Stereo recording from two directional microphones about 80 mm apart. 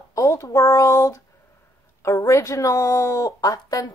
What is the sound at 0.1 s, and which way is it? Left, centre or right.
A woman's voice, left.